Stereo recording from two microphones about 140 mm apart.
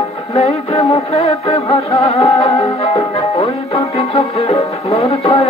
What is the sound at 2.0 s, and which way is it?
Music, 45° left (ahead or behind).